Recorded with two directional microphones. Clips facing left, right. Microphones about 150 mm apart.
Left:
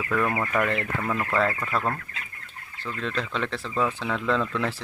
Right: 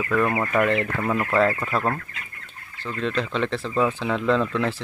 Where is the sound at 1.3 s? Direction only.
5° right (ahead or behind).